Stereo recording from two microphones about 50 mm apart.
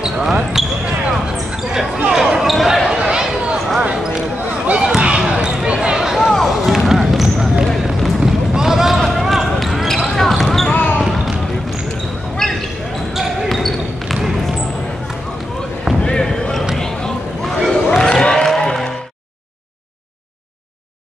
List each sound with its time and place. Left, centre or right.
0.0 s speech: centre
1.2 s basketball bounce: centre
3.5 s basketball bounce: centre
4.6 s basketball bounce: centre
6.1 s a sound: centre
6.9 s basketball bounce: centre
10.7 s basketball bounce: left
13.1 s basketball bounce: centre
13.5 s basketball bounce: centre
16.0 s basketball bounce: centre
16.7 s a sound: centre
17.8 s music: centre